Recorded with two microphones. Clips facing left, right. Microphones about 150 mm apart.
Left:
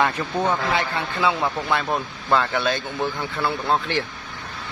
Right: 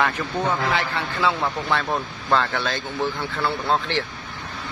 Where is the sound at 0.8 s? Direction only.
15° left (ahead or behind).